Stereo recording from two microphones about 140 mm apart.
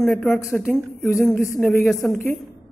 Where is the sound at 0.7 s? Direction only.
5° left (ahead or behind).